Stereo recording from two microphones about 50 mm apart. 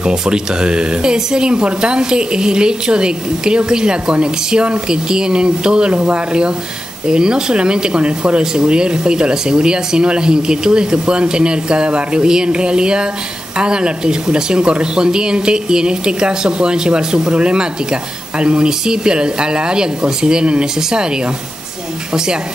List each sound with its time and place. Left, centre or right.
0.0 s speech: centre